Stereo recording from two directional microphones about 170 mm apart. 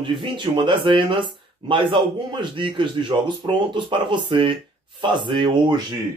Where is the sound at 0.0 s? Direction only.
30° right (ahead or behind).